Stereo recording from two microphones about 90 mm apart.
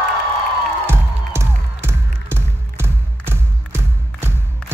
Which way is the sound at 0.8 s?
25° right (ahead or behind).